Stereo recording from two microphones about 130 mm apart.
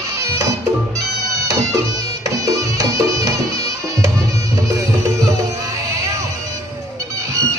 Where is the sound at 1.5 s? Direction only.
25° right (ahead or behind).